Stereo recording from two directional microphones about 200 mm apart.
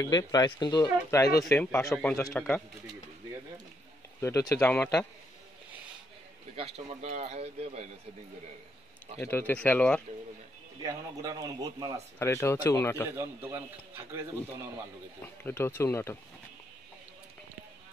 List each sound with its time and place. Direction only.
0.0 s speech: 20° left (ahead or behind)
4.2 s speech: 15° left (ahead or behind)
6.5 s speech: 30° right (ahead or behind)
9.2 s speech: 10° left (ahead or behind)
10.8 s speech: 20° right (ahead or behind)
12.2 s speech: 15° left (ahead or behind)
13.1 s a man's voice: 10° right (ahead or behind)
15.2 s speech: 10° left (ahead or behind)